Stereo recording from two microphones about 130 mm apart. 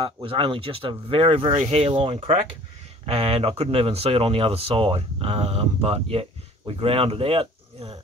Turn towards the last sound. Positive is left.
turn(degrees=-50)  # may be behind; listen again after turning